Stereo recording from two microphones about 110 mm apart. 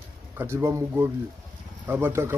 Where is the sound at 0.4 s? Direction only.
25° right (ahead or behind).